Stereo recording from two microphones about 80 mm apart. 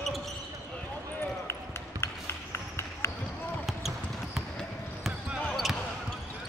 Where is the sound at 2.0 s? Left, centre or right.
Left.